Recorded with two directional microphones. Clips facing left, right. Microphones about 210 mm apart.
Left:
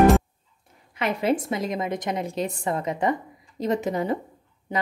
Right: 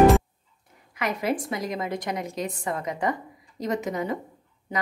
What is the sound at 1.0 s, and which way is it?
A woman's voice, 25° left (ahead or behind).